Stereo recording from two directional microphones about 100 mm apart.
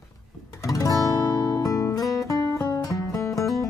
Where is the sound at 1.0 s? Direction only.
35° left (ahead or behind).